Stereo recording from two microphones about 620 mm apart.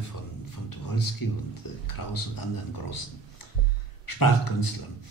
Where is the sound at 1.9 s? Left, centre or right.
Left.